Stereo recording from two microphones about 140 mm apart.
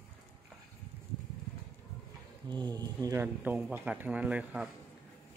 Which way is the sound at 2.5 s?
30° right (ahead or behind).